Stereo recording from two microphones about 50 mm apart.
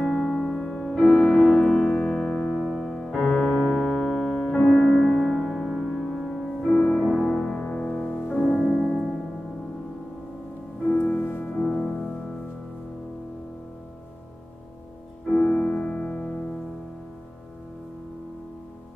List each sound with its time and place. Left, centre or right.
0.0 s music: centre
3.2 s piano: centre
4.6 s music: centre
6.0 s music: centre; by 8.5 s left
8.5 s music: centre
10.9 s music: left
11.6 s music: left
15.2 s music: centre